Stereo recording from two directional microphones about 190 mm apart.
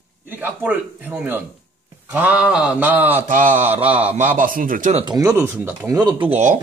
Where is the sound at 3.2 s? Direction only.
45° right (ahead or behind).